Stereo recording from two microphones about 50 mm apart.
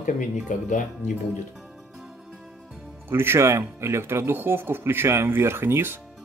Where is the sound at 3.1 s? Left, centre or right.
Right.